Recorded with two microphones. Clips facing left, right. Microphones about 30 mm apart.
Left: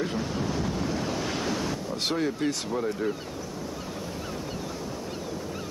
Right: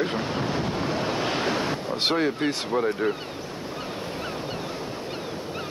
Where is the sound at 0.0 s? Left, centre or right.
Right.